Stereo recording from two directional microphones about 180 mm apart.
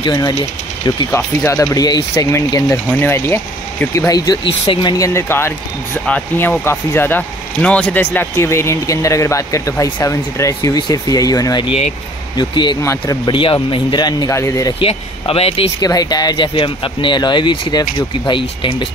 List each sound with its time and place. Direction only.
0.0 s speech: 20° left (ahead or behind)
4.6 s speech: 20° left (ahead or behind)
14.8 s speech: 30° left (ahead or behind)
15.8 s speech: 20° left (ahead or behind)